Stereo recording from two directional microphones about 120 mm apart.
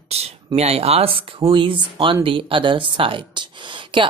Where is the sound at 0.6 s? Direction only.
60° right (ahead or behind).